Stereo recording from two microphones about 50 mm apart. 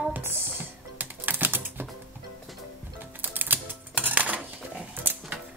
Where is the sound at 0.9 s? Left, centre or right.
Right.